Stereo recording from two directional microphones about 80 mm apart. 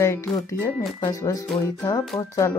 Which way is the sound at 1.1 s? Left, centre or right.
Left.